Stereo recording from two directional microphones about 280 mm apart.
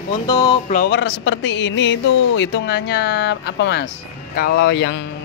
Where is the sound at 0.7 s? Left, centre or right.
Left.